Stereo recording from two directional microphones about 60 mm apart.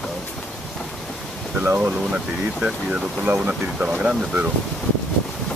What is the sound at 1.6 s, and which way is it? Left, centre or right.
Speech, right.